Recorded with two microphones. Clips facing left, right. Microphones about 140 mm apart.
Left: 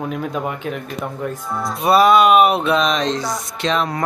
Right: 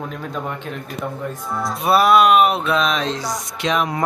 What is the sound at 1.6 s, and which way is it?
Music, centre (ahead or behind).